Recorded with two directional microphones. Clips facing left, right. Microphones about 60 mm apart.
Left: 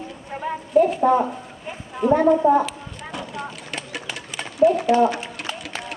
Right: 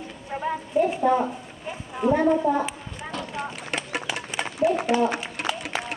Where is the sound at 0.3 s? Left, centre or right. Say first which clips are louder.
Even; centre.